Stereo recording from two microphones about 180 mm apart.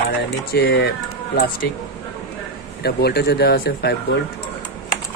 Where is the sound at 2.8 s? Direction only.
60° left (ahead or behind).